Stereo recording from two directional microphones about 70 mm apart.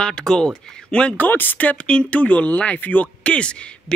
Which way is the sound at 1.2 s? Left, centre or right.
Left.